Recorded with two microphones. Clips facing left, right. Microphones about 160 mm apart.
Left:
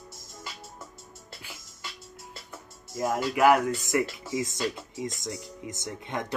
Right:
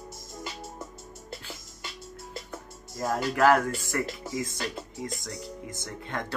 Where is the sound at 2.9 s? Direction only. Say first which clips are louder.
Left 1 dB; 5° left (ahead or behind).